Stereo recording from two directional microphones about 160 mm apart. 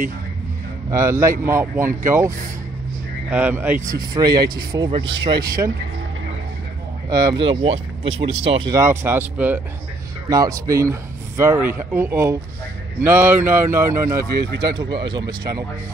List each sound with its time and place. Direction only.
0.8 s speech: 20° right (ahead or behind)
3.9 s speech: 25° right (ahead or behind)
7.1 s speech: 25° right (ahead or behind)
8.7 s speech: 15° right (ahead or behind)
10.3 s speech: 20° right (ahead or behind)
14.6 s speech: 25° right (ahead or behind)